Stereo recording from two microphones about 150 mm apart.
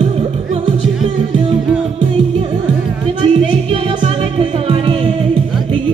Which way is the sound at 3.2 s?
35° right (ahead or behind).